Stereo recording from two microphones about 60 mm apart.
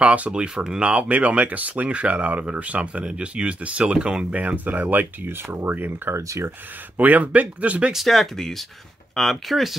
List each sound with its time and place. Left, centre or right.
0.0 s speech: right
6.2 s speech: right
7.0 s speech: right
7.9 s speech: centre